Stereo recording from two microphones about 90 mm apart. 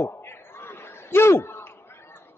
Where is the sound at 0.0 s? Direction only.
25° left (ahead or behind).